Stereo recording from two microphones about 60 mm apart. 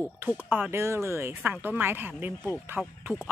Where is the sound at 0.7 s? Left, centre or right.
Right.